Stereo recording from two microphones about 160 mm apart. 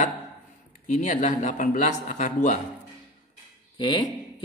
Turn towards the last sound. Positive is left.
turn(degrees=30)  # may be behind; listen again after turning